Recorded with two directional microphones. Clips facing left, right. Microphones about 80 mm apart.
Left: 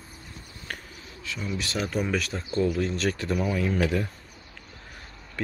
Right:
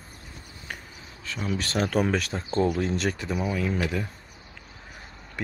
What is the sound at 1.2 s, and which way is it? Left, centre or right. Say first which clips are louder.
Speech: right 2 dB; right.